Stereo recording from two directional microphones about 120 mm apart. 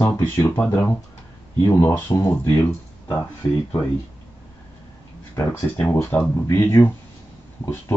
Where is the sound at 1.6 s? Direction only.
25° left (ahead or behind).